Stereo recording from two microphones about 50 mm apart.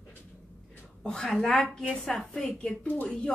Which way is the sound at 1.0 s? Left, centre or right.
Centre.